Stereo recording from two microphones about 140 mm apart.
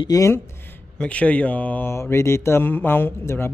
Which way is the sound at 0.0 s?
25° left (ahead or behind).